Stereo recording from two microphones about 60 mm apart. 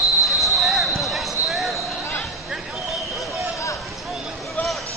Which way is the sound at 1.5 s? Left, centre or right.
Centre.